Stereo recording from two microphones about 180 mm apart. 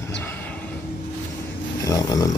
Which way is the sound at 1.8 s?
20° left (ahead or behind).